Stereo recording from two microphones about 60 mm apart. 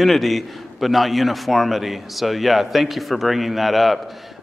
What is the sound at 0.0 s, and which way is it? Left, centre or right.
A man's voice, centre.